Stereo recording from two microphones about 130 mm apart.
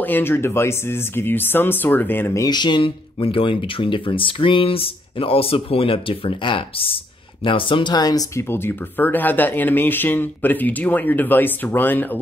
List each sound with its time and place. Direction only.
0.0 s speech: 15° left (ahead or behind)
2.4 s speech: 35° left (ahead or behind); by 12.2 s 15° left (ahead or behind)